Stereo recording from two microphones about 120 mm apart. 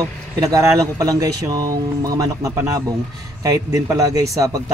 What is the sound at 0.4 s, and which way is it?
Speech, 25° right (ahead or behind).